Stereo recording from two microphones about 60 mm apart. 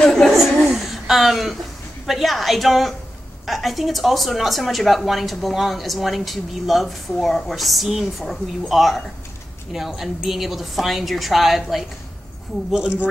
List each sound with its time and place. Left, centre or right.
0.0 s a sound: centre
2.0 s speech: centre
12.7 s speech: centre